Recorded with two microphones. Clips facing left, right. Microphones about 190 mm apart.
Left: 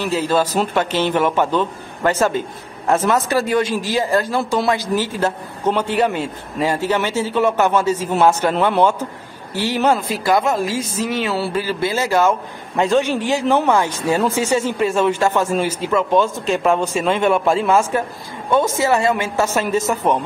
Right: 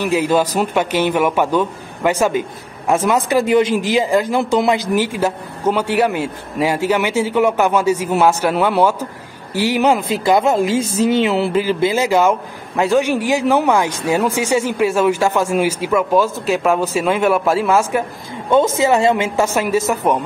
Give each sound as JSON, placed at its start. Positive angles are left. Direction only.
{"t": 0.0, "sound": "a man's voice", "side_deg": -15}
{"t": 18.5, "sound": "a man's voice", "side_deg": -20}